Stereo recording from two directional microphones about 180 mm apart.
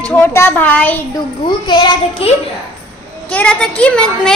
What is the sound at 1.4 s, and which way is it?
Speech, 25° left (ahead or behind).